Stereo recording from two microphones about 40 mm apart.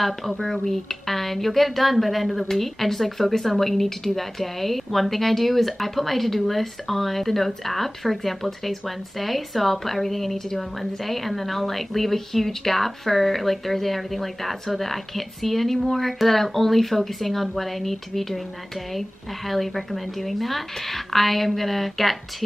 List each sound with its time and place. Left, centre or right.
0.0 s a woman's voice: centre